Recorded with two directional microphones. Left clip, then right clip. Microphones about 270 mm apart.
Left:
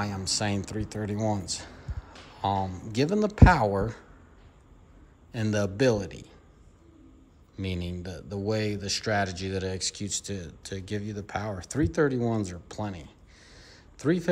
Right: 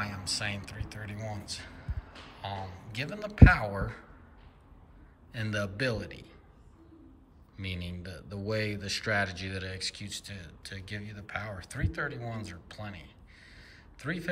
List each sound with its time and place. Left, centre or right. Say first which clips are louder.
0.0 s speech: left 4 dB; centre
5.3 s speech: left 5 dB; centre
7.5 s speech: left 5 dB; centre